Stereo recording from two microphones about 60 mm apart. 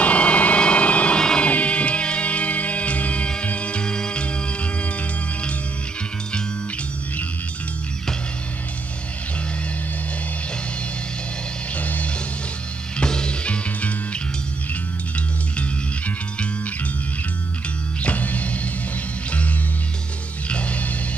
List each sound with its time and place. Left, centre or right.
0.0 s vehicle: left
1.5 s music: left
11.7 s music: left
13.0 s music: centre
18.0 s music: left
20.4 s music: left